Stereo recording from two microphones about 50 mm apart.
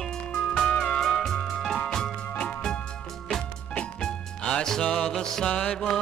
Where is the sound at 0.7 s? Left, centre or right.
Left.